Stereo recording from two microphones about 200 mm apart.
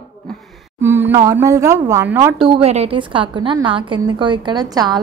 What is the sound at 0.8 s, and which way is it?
A woman's voice, 10° right (ahead or behind).